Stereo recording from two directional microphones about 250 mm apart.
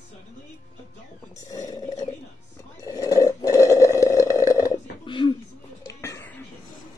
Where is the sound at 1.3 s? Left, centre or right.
Centre.